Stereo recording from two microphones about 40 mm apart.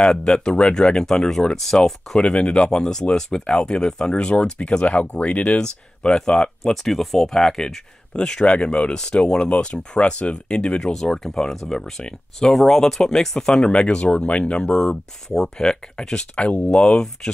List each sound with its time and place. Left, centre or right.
0.0 s speech: centre
1.6 s speech: centre
2.2 s speech: left
5.6 s speech: centre
10.8 s speech: centre
13.7 s speech: left
15.2 s speech: centre